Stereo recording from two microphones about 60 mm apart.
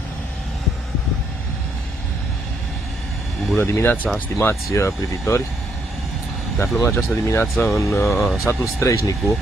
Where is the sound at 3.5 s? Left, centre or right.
Left.